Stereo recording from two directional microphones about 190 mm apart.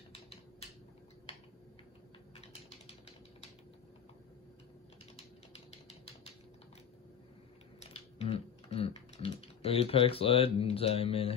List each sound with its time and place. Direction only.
0.1 s typewriter: 30° left (ahead or behind)
7.8 s typing: 35° left (ahead or behind)